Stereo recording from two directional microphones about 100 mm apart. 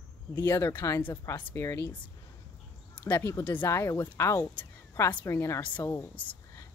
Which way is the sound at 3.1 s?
25° left (ahead or behind).